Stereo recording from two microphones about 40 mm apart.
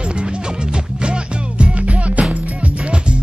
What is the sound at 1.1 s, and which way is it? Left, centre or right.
Music, right.